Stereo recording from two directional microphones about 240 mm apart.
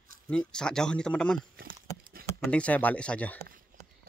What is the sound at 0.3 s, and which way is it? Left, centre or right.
Speech, centre.